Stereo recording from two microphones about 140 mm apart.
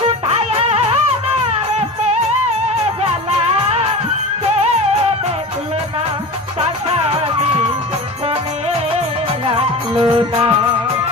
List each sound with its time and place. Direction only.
0.6 s music: 45° right (ahead or behind)
9.5 s music: 45° right (ahead or behind)